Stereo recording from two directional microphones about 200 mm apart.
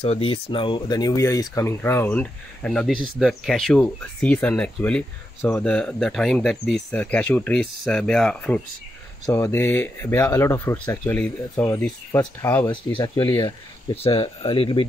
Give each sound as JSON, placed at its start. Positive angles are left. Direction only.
{"t": 0.0, "sound": "speech", "side_deg": 30}